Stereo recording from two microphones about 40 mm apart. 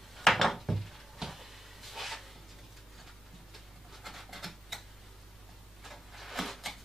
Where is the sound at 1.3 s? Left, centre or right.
Centre.